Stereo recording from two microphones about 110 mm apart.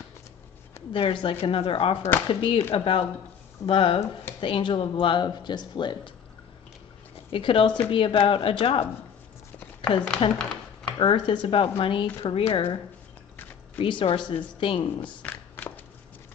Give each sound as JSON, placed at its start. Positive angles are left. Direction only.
{"t": 0.9, "sound": "speech", "side_deg": 55}
{"t": 4.0, "sound": "speech", "side_deg": 25}
{"t": 4.4, "sound": "speech", "side_deg": 50}
{"t": 7.2, "sound": "speech", "side_deg": 55}
{"t": 10.2, "sound": "speech", "side_deg": 50}
{"t": 15.0, "sound": "a sound", "side_deg": 15}